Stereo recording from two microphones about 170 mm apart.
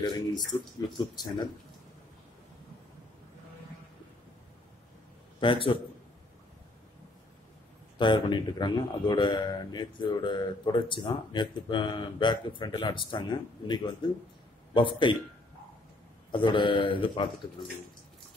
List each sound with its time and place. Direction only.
0.0 s a man's voice: 25° left (ahead or behind)
5.4 s a man's voice: 30° left (ahead or behind)
8.0 s a man's voice: 30° left (ahead or behind)
16.3 s a man's voice: 30° left (ahead or behind)